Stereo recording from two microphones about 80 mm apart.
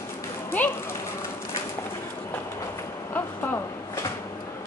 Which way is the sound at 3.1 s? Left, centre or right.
Left.